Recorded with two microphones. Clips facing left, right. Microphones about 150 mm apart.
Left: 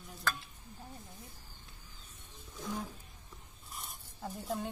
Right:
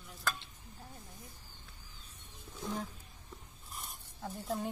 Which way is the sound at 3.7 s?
Centre (ahead or behind).